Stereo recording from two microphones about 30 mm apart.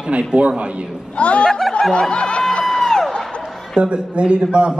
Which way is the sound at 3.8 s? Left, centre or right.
Right.